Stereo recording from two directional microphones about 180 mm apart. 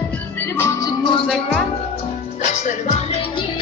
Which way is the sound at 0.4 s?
15° left (ahead or behind).